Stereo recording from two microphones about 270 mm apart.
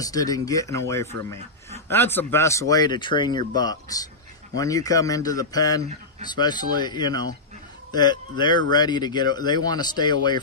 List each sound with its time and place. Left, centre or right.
0.0 s speech: centre